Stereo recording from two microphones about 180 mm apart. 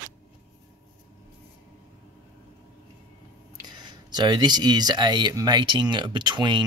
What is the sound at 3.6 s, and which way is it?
Speech, 25° right (ahead or behind).